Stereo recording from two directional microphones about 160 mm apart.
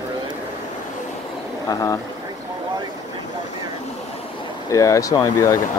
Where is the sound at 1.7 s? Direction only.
20° left (ahead or behind).